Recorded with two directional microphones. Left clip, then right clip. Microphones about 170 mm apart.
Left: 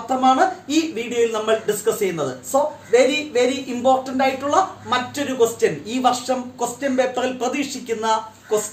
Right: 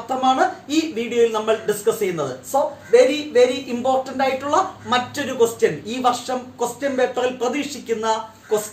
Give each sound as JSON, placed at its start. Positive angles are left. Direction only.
{"t": 0.2, "sound": "speech", "side_deg": 20}